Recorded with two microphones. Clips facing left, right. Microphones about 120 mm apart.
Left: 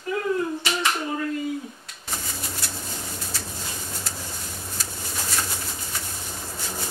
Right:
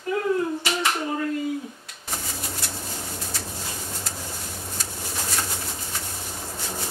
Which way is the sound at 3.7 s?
25° right (ahead or behind).